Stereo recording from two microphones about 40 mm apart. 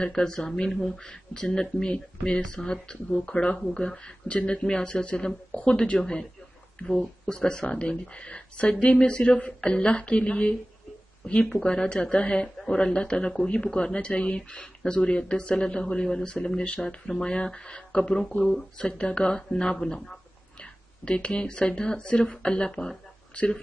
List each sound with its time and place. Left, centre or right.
0.0 s speech: centre
5.9 s speech: centre
7.3 s speech: left
11.5 s speech: centre
13.5 s speech: left